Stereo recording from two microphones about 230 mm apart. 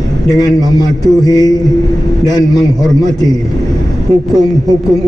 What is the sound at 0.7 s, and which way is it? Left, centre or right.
Speech, centre.